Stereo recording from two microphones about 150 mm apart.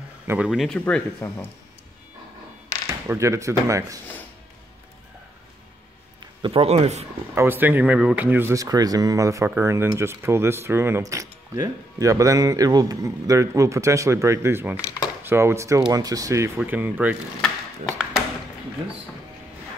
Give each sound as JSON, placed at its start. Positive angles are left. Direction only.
{"t": 0.3, "sound": "speech", "side_deg": -5}
{"t": 3.1, "sound": "speech", "side_deg": -20}
{"t": 6.4, "sound": "a man's voice", "side_deg": -40}
{"t": 7.3, "sound": "speech", "side_deg": -15}
{"t": 14.8, "sound": "speech", "side_deg": 20}
{"t": 15.2, "sound": "speech", "side_deg": -15}